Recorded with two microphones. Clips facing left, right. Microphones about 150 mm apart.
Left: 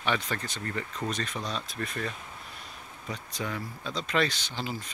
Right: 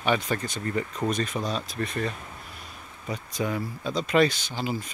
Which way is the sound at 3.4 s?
15° right (ahead or behind).